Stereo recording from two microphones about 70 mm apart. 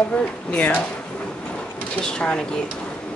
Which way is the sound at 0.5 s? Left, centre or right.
Left.